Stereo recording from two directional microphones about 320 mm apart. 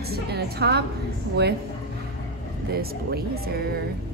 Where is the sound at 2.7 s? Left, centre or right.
Right.